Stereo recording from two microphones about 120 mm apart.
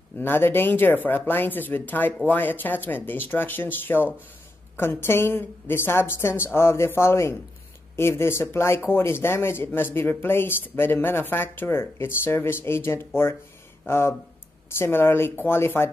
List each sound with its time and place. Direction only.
0.2 s speech: 15° left (ahead or behind)